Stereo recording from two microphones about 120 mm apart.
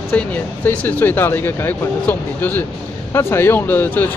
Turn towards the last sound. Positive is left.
turn(degrees=15)  # may be behind; listen again after turning